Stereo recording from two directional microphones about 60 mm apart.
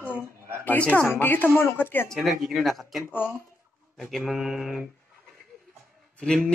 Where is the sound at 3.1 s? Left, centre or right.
Left.